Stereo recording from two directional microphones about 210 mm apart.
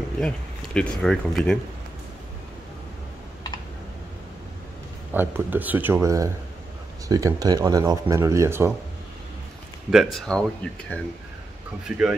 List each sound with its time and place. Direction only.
0.7 s speech: centre (ahead or behind)
5.1 s speech: 10° right (ahead or behind)
9.8 s speech: centre (ahead or behind)